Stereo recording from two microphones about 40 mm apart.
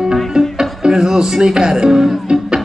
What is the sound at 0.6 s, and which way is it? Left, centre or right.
Music, centre.